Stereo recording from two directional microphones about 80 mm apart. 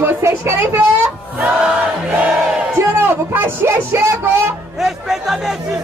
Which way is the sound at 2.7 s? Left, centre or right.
Right.